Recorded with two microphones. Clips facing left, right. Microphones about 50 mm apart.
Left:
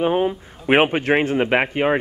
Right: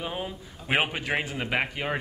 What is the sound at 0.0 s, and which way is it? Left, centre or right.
Speech, left.